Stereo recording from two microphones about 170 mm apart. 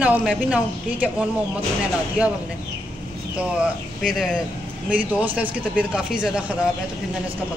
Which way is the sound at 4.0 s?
Centre (ahead or behind).